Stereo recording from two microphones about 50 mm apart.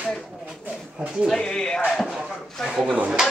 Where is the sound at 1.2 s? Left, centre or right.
Centre.